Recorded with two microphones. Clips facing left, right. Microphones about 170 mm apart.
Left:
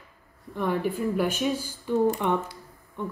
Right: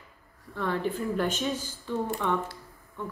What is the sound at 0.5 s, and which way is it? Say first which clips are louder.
Speech: left 3 dB; 15° left (ahead or behind).